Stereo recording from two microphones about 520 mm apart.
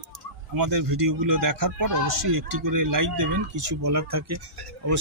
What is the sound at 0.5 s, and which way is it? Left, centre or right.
Speech, right.